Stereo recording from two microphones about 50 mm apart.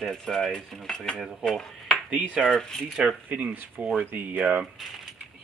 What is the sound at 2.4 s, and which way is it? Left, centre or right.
Speech, centre.